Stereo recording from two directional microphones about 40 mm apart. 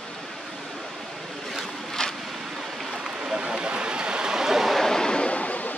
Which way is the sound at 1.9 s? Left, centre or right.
Centre.